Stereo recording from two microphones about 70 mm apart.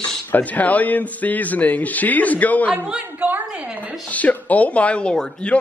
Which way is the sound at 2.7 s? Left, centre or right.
Centre.